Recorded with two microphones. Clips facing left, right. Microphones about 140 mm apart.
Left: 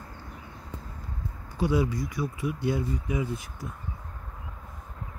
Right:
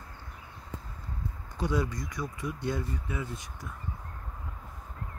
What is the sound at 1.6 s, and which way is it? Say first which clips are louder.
Speech: left 5 dB; 5° left (ahead or behind).